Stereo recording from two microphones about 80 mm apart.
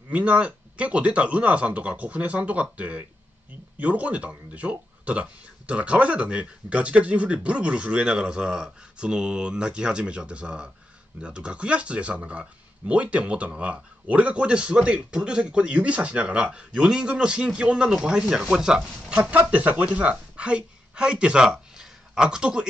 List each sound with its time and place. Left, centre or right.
0.1 s speech: centre